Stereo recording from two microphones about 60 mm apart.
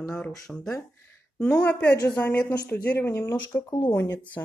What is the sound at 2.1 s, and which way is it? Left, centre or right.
A woman's voice, left.